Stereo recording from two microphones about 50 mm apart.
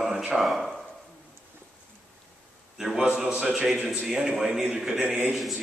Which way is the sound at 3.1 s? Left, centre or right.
Centre.